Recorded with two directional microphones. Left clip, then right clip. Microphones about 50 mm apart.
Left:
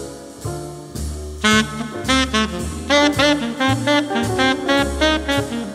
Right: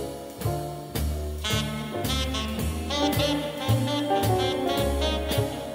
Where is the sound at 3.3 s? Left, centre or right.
Left.